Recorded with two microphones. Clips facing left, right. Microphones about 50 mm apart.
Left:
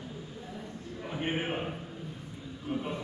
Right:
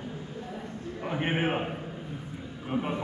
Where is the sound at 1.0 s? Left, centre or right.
Right.